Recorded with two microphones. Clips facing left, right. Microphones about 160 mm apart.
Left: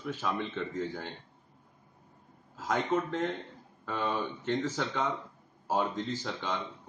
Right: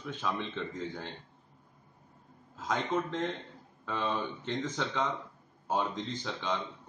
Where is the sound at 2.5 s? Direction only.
5° left (ahead or behind).